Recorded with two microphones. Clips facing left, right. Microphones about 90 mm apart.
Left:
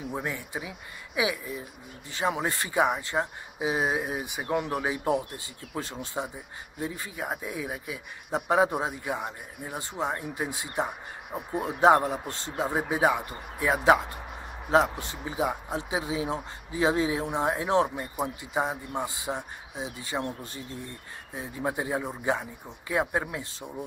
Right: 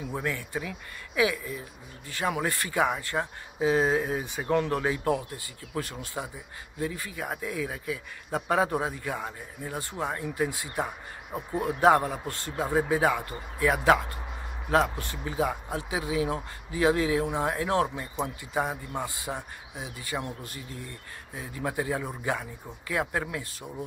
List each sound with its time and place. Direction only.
0.1 s speech: 20° left (ahead or behind)
21.4 s speech: 25° left (ahead or behind)